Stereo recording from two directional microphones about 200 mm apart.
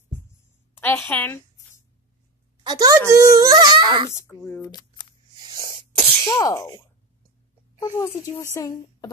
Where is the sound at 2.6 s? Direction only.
20° right (ahead or behind).